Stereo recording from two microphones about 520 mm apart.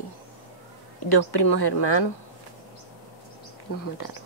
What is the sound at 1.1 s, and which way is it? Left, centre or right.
Speech, left.